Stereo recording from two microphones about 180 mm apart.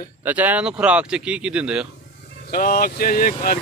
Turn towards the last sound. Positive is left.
turn(degrees=50)  # may be behind; listen again after turning